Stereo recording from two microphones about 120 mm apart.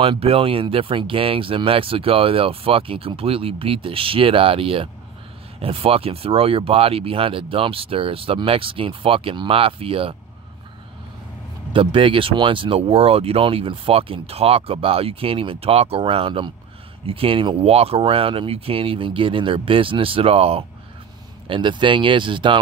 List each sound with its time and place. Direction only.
0.0 s speech: 50° right (ahead or behind)
11.7 s speech: 45° right (ahead or behind)
21.5 s speech: 40° right (ahead or behind)